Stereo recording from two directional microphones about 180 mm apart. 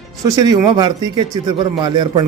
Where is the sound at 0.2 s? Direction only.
20° right (ahead or behind).